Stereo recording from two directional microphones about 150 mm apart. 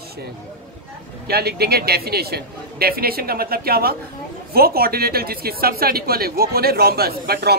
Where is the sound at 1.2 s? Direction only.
90° right.